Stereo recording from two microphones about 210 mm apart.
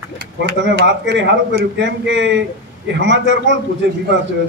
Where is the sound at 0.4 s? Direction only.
60° right (ahead or behind).